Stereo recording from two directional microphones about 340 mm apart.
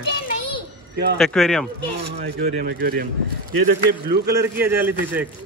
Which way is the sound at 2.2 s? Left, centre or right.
Right.